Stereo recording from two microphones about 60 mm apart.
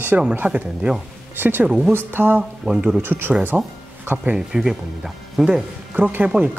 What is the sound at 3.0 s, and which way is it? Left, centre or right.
Speech, right.